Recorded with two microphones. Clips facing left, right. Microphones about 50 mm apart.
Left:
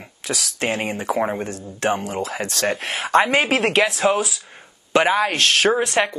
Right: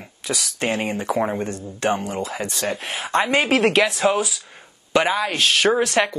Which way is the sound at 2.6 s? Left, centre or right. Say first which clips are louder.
Left 5 dB; left.